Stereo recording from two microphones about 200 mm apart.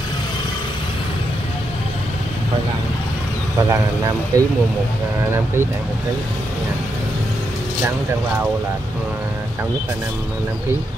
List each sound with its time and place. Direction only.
4.3 s speech: 20° right (ahead or behind)